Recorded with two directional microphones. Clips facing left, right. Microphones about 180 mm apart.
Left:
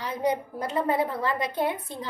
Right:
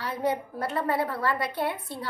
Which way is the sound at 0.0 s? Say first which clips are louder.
Left 1 dB; 20° left (ahead or behind).